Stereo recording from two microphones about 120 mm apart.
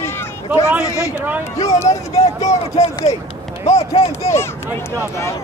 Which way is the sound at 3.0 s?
65° left (ahead or behind).